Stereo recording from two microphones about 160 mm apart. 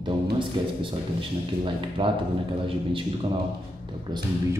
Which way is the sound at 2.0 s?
30° right (ahead or behind).